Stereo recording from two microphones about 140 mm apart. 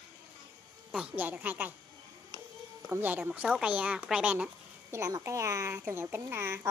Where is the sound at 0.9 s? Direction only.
10° right (ahead or behind).